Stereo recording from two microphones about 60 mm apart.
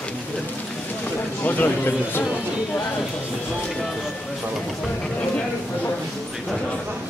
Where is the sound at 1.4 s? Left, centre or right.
Left.